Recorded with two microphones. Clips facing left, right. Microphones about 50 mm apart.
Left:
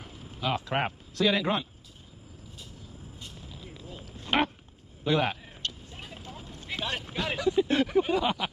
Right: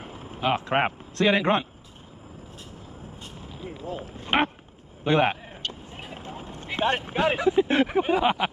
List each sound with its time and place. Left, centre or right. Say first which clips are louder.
0.0 s vehicle: right 6 dB; right
1.1 s speech: right 4 dB; right
3.2 s vehicle: right 5 dB; right
3.9 s a man's voice: right 3 dB; right
5.9 s speech: right 5 dB; right